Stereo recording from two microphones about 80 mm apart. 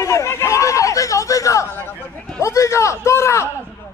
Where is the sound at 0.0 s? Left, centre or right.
Left.